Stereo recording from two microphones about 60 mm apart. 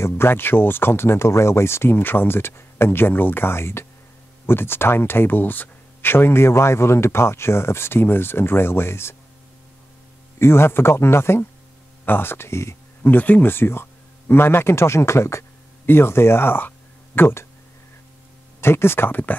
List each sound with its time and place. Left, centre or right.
0.0 s speech: left
10.4 s speech: left
13.0 s speech: left
18.6 s speech: left